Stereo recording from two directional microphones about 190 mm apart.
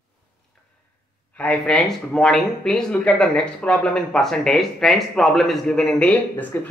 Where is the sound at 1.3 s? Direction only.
5° left (ahead or behind).